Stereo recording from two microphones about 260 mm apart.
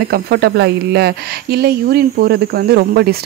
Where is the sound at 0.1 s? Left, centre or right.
Right.